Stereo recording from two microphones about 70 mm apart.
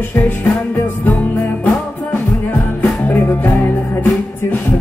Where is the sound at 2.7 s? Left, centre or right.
Left.